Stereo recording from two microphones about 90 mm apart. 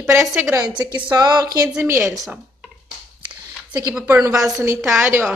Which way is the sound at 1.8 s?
30° right (ahead or behind).